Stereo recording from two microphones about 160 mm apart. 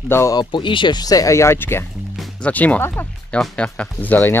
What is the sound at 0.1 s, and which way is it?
Speech, 20° left (ahead or behind).